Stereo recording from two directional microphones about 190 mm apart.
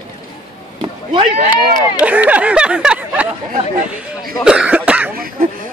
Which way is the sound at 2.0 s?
10° right (ahead or behind).